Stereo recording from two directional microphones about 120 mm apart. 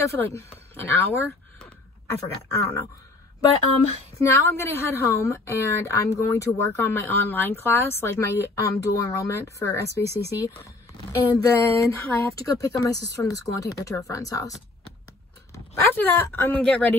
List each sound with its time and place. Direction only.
0.0 s a woman's voice: 25° left (ahead or behind)
4.2 s a woman's voice: 25° left (ahead or behind)
16.0 s a woman's voice: 15° left (ahead or behind)